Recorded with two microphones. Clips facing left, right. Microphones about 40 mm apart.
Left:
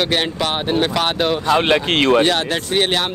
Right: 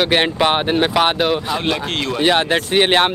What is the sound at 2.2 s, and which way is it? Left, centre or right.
Speech, centre.